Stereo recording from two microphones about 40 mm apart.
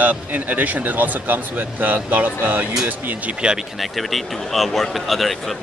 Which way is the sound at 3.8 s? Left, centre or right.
Centre.